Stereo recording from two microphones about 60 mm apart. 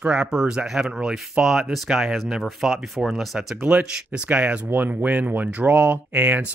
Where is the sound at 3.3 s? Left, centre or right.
Centre.